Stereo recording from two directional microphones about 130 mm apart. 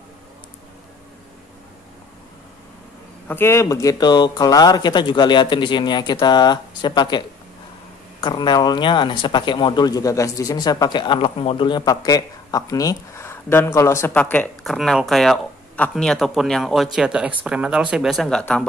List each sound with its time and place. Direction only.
3.3 s speech: 20° left (ahead or behind)
14.6 s speech: centre (ahead or behind)